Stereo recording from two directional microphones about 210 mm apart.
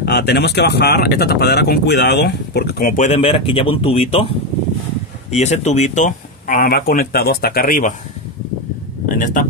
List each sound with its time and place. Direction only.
0.0 s speech: 55° left (ahead or behind)
3.0 s speech: 30° left (ahead or behind)
5.3 s speech: 30° left (ahead or behind)
9.2 s speech: 40° left (ahead or behind)